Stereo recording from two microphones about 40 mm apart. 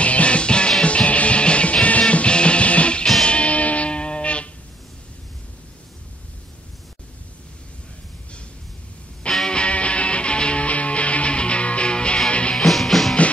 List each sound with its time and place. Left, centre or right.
0.0 s music: left
9.5 s music: left
12.5 s music: centre